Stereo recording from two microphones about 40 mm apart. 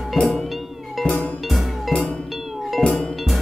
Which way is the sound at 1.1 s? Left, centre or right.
Left.